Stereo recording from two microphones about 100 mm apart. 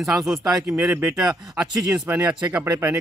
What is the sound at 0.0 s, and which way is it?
Speech, 30° right (ahead or behind).